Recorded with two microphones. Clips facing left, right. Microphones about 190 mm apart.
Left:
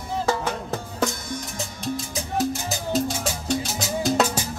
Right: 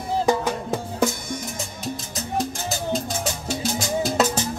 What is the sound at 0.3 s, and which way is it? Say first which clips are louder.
Music: right 3 dB; 10° right (ahead or behind).